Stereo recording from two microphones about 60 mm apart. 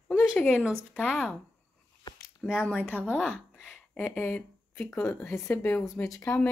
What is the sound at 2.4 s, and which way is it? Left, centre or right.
Speech, centre.